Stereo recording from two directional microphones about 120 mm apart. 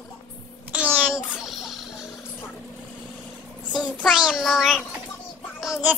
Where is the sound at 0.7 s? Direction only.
15° right (ahead or behind).